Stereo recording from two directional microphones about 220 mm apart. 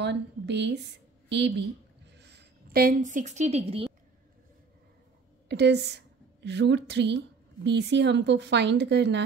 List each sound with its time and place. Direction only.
0.0 s a woman's voice: 50° right (ahead or behind)
2.0 s a sound: 50° right (ahead or behind); by 3.8 s 30° right (ahead or behind)
5.5 s a woman's voice: 50° right (ahead or behind)